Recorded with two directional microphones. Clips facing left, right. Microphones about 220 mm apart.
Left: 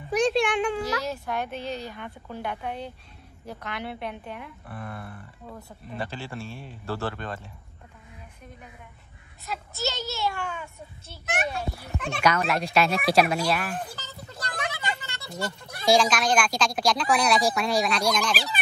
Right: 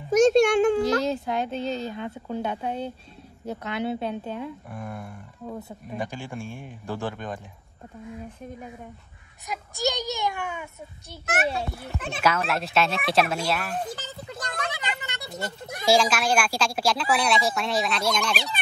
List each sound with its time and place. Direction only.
0.1 s a child's voice: 45° right (ahead or behind)
1.0 s speech: 20° right (ahead or behind)
4.6 s speech: centre (ahead or behind)
5.0 s speech: 15° right (ahead or behind)
9.5 s speech: 15° right (ahead or behind)
12.0 s speech: 5° right (ahead or behind)
14.7 s speech: 20° right (ahead or behind)
15.8 s speech: 5° right (ahead or behind)